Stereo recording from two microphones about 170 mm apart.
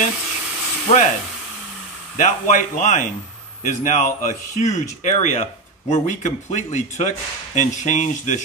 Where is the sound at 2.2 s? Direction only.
50° left (ahead or behind).